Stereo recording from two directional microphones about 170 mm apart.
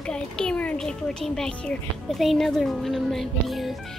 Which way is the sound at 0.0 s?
5° left (ahead or behind).